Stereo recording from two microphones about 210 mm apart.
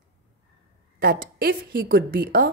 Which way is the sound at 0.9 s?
45° right (ahead or behind).